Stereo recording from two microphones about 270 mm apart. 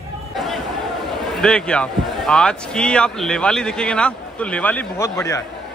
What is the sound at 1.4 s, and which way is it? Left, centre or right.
Speech, centre.